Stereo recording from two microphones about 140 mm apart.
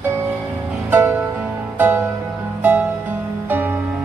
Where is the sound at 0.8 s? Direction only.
15° right (ahead or behind).